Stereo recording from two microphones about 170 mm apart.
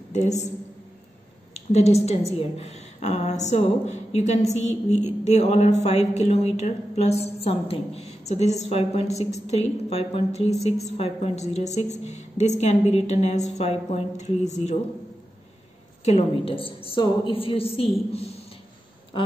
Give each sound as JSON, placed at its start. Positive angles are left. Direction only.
{"t": 0.1, "sound": "a woman's voice", "side_deg": 45}
{"t": 1.5, "sound": "a woman's voice", "side_deg": 40}
{"t": 16.0, "sound": "a woman's voice", "side_deg": 40}
{"t": 19.1, "sound": "a woman's voice", "side_deg": 30}